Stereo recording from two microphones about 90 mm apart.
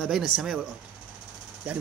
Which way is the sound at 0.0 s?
Centre (ahead or behind).